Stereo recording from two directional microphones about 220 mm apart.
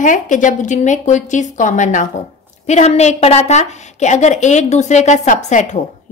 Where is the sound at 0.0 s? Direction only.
35° left (ahead or behind).